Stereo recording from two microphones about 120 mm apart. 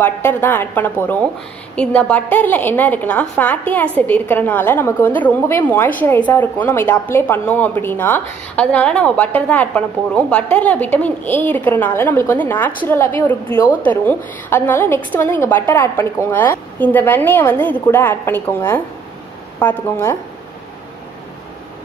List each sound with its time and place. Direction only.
0.0 s a woman's voice: 15° left (ahead or behind)